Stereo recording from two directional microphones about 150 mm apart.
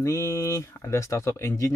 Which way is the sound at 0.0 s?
20° left (ahead or behind).